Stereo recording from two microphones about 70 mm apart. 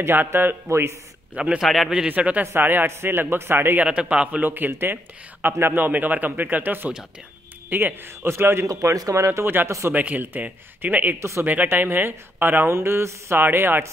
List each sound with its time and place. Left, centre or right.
0.0 s speech: right
0.7 s speech: right
1.3 s a man's voice: centre
1.6 s a man's voice: centre
1.9 s a man's voice: centre
2.4 s speech: right
3.8 s a man's voice: centre
4.5 s a man's voice: right
8.6 s a man's voice: right
9.1 s speech: right
9.9 s a man's voice: right
11.1 s speech: right
11.4 s speech: right